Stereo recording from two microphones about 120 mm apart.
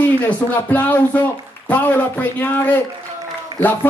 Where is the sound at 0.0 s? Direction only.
15° left (ahead or behind).